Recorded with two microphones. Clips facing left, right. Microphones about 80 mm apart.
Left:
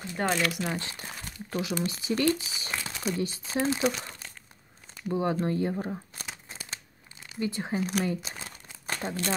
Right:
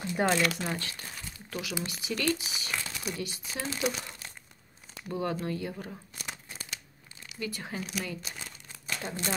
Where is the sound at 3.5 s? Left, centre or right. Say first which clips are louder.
Left 11 dB; left.